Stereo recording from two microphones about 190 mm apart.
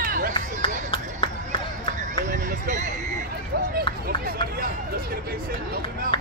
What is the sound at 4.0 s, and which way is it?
Run, 50° right (ahead or behind).